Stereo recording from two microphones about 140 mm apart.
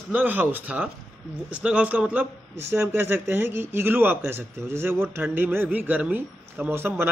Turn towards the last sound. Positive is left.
turn(degrees=-15)  # may be behind; listen again after turning